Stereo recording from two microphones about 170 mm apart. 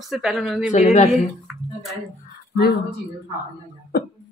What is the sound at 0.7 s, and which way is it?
Speech, 45° left (ahead or behind).